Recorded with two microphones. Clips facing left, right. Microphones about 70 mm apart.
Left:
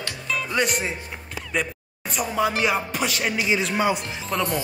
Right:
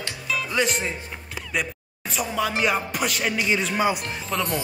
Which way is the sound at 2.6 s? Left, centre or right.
Centre.